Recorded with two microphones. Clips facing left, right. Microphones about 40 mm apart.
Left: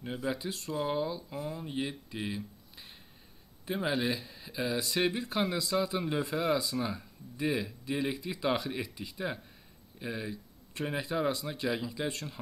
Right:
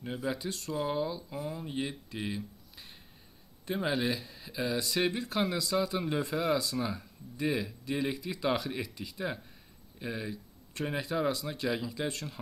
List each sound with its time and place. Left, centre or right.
0.0 s speech: centre